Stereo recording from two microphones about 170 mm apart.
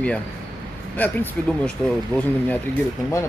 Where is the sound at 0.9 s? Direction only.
10° left (ahead or behind).